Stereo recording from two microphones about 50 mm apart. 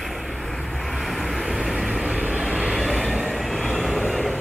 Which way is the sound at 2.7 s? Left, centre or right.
Centre.